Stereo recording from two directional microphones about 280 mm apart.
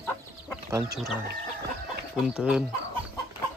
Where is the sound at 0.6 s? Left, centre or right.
Centre.